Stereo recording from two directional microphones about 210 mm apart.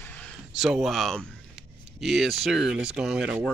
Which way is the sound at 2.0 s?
Centre (ahead or behind).